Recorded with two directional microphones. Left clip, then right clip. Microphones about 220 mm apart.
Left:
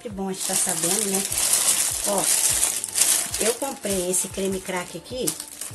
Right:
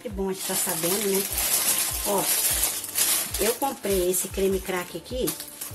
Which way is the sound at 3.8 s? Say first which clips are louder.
Right 1 dB; centre (ahead or behind).